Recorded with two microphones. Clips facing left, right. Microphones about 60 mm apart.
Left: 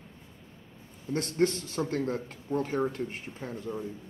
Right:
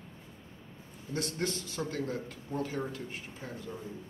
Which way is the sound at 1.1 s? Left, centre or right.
Left.